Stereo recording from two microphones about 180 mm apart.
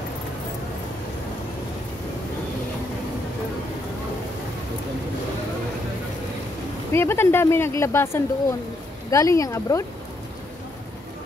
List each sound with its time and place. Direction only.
6.9 s speech: 15° left (ahead or behind)